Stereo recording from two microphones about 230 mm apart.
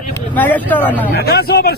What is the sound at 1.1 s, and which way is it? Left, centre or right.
Speech, left.